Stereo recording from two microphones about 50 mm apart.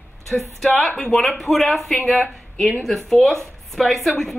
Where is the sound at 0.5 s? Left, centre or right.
Centre.